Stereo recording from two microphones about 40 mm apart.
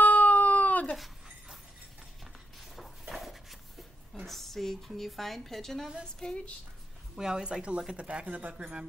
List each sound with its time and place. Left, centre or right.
0.0 s cat: left
0.9 s dog: centre
2.7 s a sound: centre
4.1 s a woman's voice: centre
7.2 s a woman's voice: centre